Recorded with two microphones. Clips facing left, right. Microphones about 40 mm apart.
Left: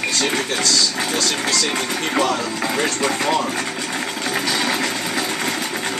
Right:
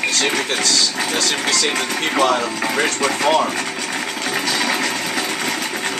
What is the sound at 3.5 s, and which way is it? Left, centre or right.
Sewing machine, centre.